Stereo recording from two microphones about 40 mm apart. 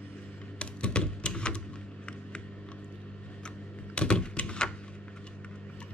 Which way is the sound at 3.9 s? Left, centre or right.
Left.